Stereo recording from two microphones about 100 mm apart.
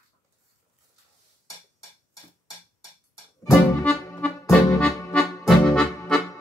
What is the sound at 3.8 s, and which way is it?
Music, 15° left (ahead or behind).